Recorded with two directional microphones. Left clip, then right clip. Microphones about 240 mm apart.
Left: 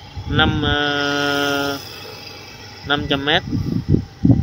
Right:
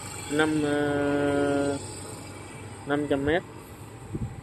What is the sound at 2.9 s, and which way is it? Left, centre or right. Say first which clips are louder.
Speech: left 7 dB; centre.